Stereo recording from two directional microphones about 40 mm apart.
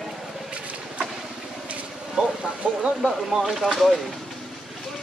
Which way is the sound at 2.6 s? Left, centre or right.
Right.